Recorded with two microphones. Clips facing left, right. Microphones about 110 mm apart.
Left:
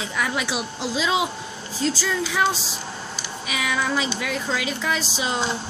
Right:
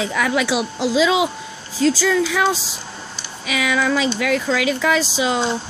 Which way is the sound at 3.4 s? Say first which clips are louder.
Right 6 dB; 90° right.